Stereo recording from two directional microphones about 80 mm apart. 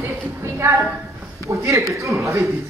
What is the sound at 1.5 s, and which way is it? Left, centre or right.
Speech, right.